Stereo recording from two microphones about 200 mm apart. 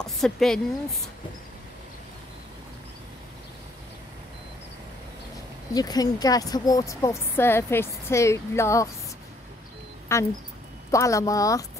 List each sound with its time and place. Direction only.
0.0 s a woman's voice: centre (ahead or behind)
5.8 s a woman's voice: 20° left (ahead or behind)
10.1 s a woman's voice: 15° left (ahead or behind)